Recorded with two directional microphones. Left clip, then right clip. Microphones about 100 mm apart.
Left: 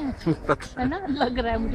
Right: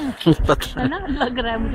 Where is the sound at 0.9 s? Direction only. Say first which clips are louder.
Even; 45° left (ahead or behind).